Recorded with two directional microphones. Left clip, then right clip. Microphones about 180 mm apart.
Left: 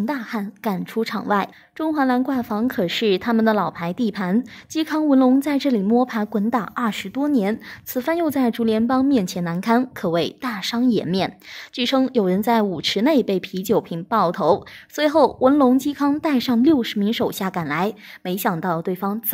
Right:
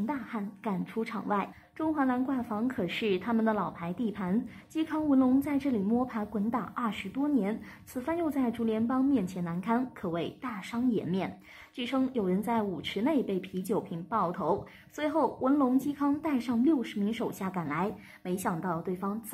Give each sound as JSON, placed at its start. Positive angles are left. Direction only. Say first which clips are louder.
{"t": 0.0, "sound": "a woman's voice", "louder": "left 9 dB", "side_deg": 40}